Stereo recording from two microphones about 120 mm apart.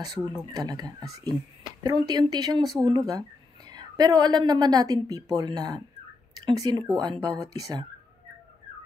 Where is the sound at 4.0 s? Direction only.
35° right (ahead or behind).